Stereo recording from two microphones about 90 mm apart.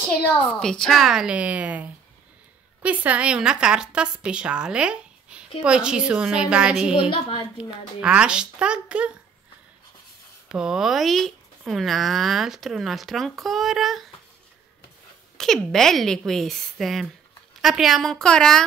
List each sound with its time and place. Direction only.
0.4 s speech: 5° left (ahead or behind)
1.3 s a woman's voice: 15° right (ahead or behind)
7.0 s a woman's voice: 65° left (ahead or behind)
7.5 s a woman's voice: 10° right (ahead or behind)
10.5 s speech: 5° right (ahead or behind)
15.3 s speech: 5° left (ahead or behind)